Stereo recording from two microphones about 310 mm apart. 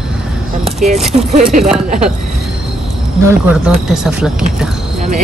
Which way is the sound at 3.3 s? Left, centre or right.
Centre.